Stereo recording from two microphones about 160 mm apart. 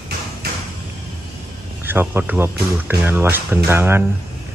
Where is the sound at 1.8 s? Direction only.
15° right (ahead or behind).